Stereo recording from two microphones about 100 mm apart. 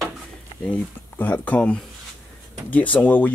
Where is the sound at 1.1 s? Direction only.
20° left (ahead or behind).